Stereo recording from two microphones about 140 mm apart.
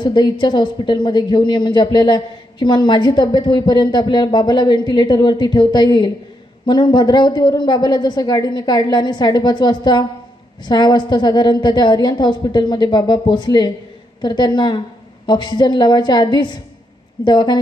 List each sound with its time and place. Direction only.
0.0 s a woman's voice: 35° left (ahead or behind)